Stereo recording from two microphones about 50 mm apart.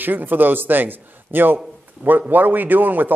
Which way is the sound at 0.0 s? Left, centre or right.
Right.